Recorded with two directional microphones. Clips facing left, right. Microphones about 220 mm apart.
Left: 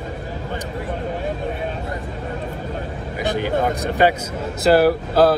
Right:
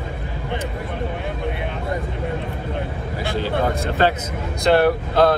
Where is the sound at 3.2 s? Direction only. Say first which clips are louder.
Left 3 dB; 20° left (ahead or behind).